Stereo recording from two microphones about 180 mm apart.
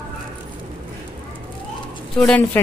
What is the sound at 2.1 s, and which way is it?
Speech, 5° left (ahead or behind).